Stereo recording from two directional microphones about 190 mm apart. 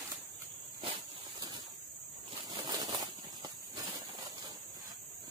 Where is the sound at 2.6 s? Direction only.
20° right (ahead or behind).